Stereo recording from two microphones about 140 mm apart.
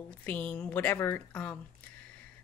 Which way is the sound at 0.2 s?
10° left (ahead or behind).